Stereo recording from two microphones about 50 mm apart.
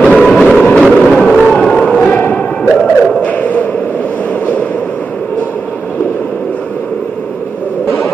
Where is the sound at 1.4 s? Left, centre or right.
Centre.